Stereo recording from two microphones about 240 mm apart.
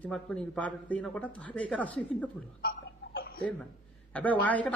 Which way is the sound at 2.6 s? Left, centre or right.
Left.